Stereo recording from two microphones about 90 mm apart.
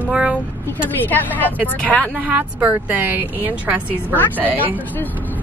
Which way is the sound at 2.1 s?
15° right (ahead or behind).